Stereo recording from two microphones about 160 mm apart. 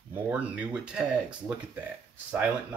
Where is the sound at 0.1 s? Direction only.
10° right (ahead or behind).